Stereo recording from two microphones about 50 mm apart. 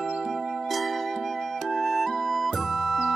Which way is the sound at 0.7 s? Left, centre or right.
Centre.